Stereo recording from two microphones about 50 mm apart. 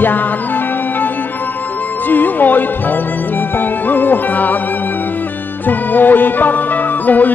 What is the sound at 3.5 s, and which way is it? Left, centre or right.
Music, left.